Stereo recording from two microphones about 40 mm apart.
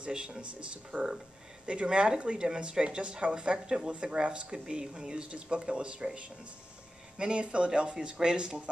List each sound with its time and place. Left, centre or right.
0.0 s speech: right
7.2 s speech: right